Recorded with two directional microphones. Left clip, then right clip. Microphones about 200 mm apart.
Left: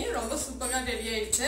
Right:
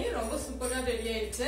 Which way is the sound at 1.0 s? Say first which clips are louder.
Left 2 dB; centre (ahead or behind).